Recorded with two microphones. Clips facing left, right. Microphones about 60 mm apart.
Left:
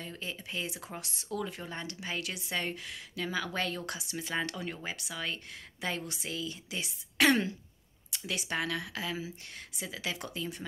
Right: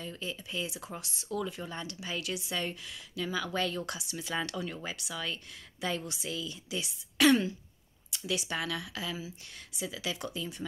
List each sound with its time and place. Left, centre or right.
0.0 s speech: left